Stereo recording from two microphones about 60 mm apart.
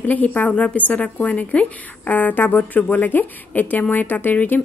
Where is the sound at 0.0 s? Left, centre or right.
Left.